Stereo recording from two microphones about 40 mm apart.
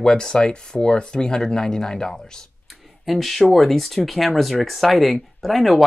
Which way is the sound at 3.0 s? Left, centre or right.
Centre.